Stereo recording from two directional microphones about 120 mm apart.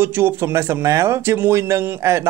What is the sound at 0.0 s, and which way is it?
Speech, 20° right (ahead or behind).